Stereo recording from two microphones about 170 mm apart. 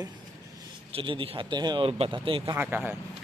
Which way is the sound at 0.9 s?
30° right (ahead or behind).